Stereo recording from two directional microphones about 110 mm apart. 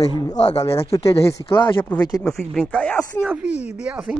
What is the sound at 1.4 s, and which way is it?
Speech, 45° left (ahead or behind).